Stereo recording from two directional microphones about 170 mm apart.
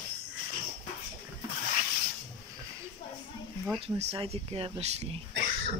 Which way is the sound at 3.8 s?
35° right (ahead or behind).